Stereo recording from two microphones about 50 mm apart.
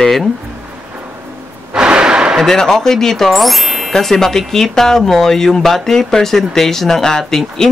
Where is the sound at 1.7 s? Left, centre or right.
Centre.